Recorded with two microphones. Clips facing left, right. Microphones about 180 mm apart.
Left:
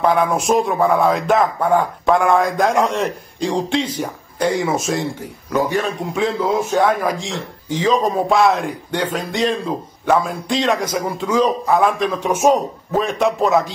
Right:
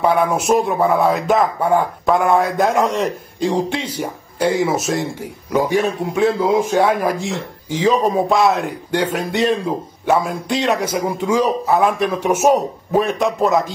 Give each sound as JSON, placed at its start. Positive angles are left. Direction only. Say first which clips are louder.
{"t": 0.0, "sound": "a man's voice", "louder": "even", "side_deg": -10}